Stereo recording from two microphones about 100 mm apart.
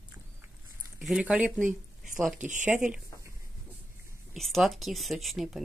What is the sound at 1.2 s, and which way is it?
Speech, 15° right (ahead or behind).